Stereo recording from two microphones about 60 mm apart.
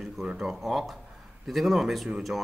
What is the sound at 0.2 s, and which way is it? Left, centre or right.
Speech, centre.